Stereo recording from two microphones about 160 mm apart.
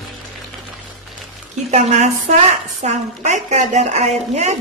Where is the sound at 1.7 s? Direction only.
45° right (ahead or behind).